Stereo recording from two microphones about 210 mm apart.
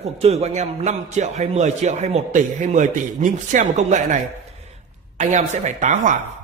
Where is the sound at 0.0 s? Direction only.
30° right (ahead or behind).